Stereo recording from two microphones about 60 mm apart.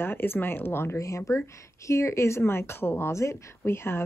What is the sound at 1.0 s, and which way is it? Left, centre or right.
A woman's voice, left.